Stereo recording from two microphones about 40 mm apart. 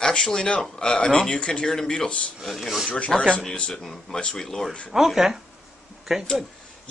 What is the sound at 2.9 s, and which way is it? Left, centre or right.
A man's voice, left.